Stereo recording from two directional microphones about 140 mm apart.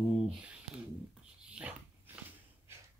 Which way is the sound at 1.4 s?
10° right (ahead or behind).